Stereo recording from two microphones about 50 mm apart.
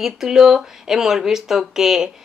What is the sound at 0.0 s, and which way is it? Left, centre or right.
Speech, centre.